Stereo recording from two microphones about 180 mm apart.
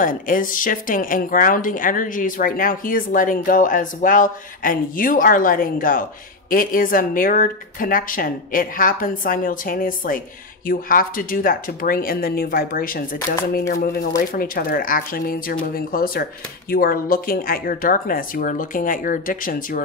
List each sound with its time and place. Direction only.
0.0 s speech: 50° left (ahead or behind)